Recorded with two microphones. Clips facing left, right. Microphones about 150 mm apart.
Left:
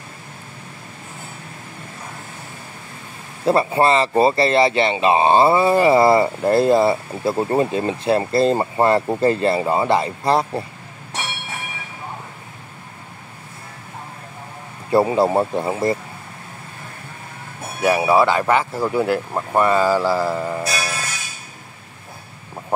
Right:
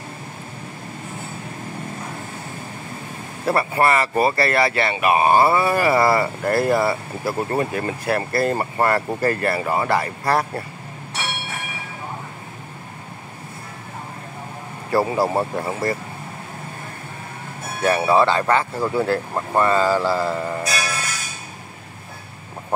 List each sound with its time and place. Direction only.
3.4 s speech: 25° left (ahead or behind)
14.9 s speech: 25° left (ahead or behind)
17.8 s speech: 10° left (ahead or behind)